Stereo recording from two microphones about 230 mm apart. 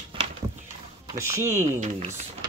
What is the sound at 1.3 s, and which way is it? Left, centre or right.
Speech, centre.